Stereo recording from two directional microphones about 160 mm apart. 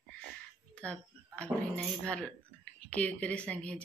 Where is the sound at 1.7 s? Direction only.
5° left (ahead or behind).